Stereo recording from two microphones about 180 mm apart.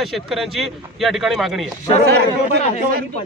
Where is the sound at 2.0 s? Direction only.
70° right (ahead or behind).